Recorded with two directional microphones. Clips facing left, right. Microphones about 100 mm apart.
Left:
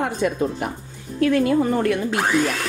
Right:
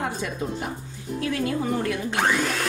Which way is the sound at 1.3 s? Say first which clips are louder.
Left 7 dB; 55° left (ahead or behind).